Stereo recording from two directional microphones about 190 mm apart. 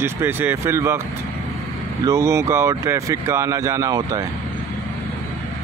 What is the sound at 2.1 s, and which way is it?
Speech, 15° right (ahead or behind).